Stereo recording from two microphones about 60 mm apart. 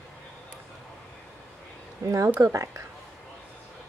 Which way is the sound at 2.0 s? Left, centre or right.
Right.